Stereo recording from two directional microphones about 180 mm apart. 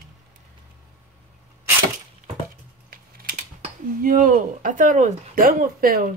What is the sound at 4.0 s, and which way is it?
Speech, 50° right (ahead or behind).